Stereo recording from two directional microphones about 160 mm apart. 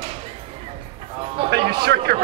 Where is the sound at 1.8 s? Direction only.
75° right (ahead or behind).